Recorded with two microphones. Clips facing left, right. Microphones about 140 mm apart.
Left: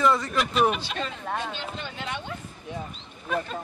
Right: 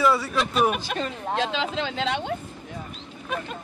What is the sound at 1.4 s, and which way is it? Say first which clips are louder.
Speech: right 7 dB; 90° right.